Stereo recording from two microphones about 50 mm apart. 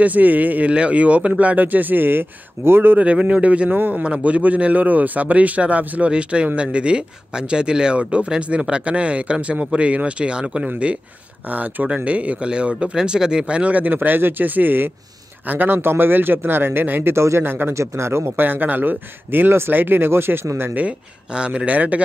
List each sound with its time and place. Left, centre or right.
0.0 s speech: right
3.0 s speech: right
3.7 s a man's voice: right
4.0 s a man's voice: right
11.4 s a man's voice: right
17.1 s a man's voice: right
17.5 s speech: right
17.7 s a man's voice: right
18.4 s speech: right
21.3 s speech: centre